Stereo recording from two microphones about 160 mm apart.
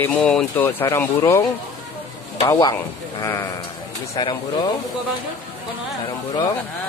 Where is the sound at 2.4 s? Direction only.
25° left (ahead or behind).